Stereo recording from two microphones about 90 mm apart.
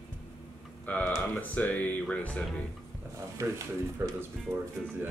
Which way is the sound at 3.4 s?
35° right (ahead or behind).